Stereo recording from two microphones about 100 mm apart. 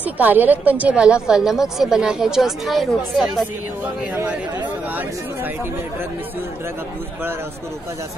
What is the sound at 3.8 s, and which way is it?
Speech, 15° right (ahead or behind).